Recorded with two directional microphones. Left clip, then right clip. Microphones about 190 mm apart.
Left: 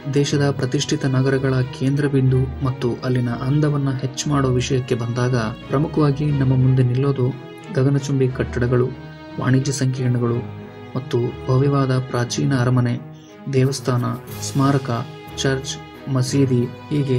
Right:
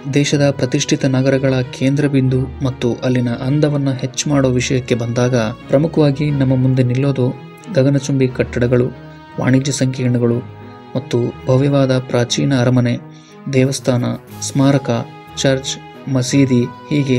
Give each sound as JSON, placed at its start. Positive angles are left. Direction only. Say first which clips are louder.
{"t": 0.1, "sound": "speech", "louder": "right 5 dB", "side_deg": -20}